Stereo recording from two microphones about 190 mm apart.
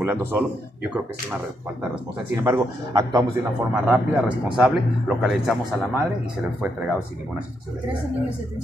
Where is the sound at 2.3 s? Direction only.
15° right (ahead or behind); by 5.8 s centre (ahead or behind).